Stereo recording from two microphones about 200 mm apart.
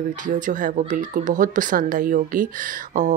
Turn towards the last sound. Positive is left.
turn(degrees=-40)  # may be behind; listen again after turning